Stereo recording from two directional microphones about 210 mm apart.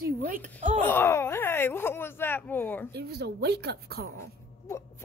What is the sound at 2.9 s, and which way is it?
Speech, 50° right (ahead or behind).